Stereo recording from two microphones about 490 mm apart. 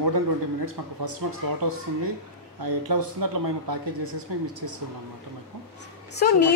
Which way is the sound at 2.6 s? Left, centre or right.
Right.